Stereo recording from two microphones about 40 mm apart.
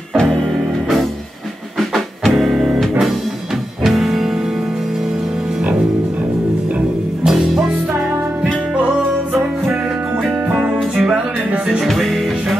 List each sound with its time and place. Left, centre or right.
1.8 s music: centre
2.3 s music: centre
3.8 s music: centre
7.2 s music: centre
8.7 s music: right
11.8 s music: centre